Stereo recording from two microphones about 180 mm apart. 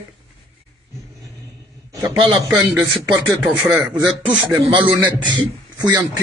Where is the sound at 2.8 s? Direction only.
Centre (ahead or behind).